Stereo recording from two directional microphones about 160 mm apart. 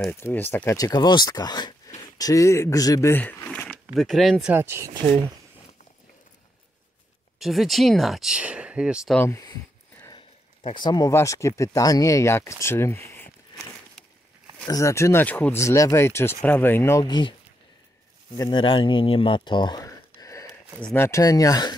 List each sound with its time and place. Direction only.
0.1 s speech: 15° left (ahead or behind)
4.6 s speech: 15° right (ahead or behind)
7.3 s speech: centre (ahead or behind)
9.2 s speech: 20° left (ahead or behind)
10.1 s speech: 30° left (ahead or behind); by 13.7 s 15° left (ahead or behind)
14.7 s speech: 20° left (ahead or behind)
17.0 s speech: 30° left (ahead or behind)
18.4 s speech: 30° left (ahead or behind)